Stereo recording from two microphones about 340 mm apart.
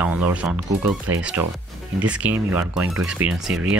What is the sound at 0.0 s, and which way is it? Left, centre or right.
Speech, centre.